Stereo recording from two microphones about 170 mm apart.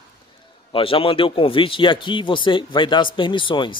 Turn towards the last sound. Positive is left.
turn(degrees=30)  # may be behind; listen again after turning